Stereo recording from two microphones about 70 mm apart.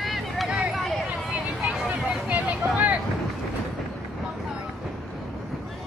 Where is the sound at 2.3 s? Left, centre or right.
Right.